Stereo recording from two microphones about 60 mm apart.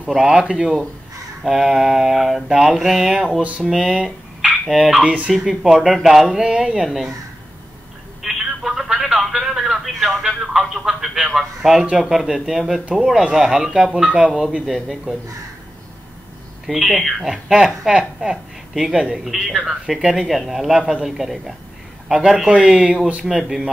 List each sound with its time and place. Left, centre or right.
0.1 s a woman's voice: centre
1.4 s a man's voice: centre
4.6 s a man's voice: centre
5.0 s speech: right
5.3 s a man's voice: centre
8.2 s telephone: centre
9.4 s a sound: centre
11.2 s a man's voice: centre
14.0 s a woman's voice: centre
16.6 s a woman's voice: centre